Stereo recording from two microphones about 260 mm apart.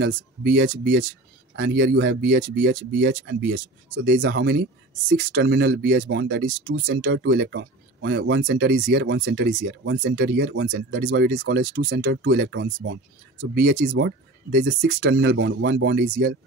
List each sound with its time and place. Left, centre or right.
0.0 s speech: right
6.4 s speech: right
11.1 s speech: right